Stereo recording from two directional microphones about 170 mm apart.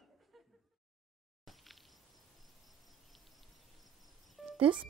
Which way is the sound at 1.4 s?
Centre (ahead or behind).